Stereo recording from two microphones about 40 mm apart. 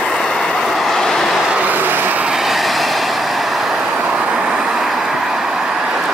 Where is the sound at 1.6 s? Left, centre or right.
Right.